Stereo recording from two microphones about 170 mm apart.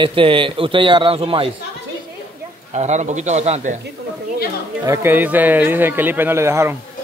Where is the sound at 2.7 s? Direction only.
45° right (ahead or behind).